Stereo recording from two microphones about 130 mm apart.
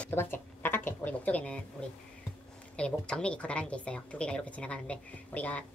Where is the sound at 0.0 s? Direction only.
15° left (ahead or behind).